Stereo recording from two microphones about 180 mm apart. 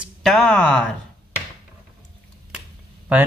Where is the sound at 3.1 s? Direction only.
10° right (ahead or behind).